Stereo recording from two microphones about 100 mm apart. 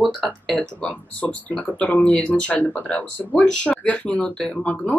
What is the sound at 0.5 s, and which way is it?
Speech, 15° left (ahead or behind).